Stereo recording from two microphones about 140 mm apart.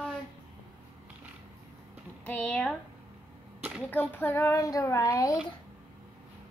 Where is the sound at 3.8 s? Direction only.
15° left (ahead or behind).